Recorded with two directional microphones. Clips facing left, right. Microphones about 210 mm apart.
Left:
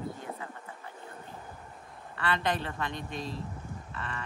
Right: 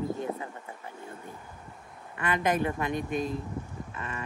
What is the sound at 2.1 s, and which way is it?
Speech, 15° right (ahead or behind).